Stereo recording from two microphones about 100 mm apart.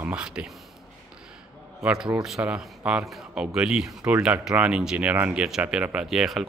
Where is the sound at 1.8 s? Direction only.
10° right (ahead or behind).